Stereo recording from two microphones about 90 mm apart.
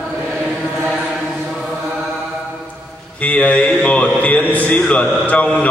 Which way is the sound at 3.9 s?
15° left (ahead or behind).